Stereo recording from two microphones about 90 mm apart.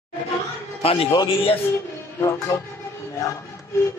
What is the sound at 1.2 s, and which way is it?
Speech, 90° left.